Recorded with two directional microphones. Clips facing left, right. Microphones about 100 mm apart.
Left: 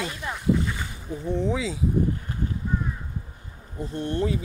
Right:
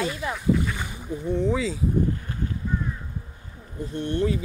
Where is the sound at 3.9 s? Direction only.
30° left (ahead or behind).